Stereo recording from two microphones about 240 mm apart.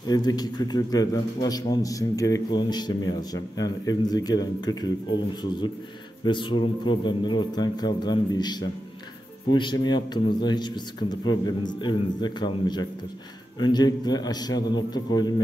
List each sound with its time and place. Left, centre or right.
0.0 s a man's voice: centre
6.2 s a man's voice: left